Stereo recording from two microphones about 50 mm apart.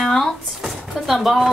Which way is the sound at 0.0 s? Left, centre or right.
Centre.